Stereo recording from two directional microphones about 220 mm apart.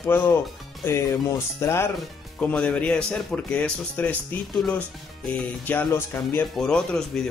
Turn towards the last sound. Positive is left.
turn(degrees=5)  # may be behind; listen again after turning